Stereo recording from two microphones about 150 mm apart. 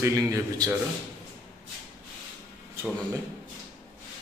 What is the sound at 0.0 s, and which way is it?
Speech, 20° right (ahead or behind).